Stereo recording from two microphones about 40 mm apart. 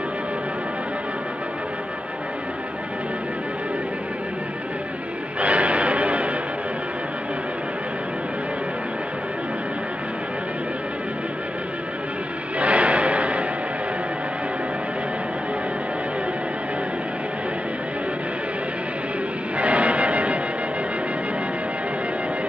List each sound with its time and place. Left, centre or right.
5.4 s a sound: right
12.5 s music: right
19.6 s music: right